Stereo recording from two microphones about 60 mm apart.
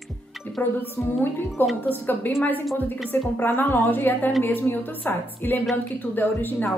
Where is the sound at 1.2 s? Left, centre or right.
Left.